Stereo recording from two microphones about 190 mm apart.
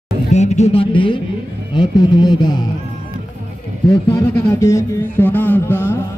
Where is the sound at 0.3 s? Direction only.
35° left (ahead or behind).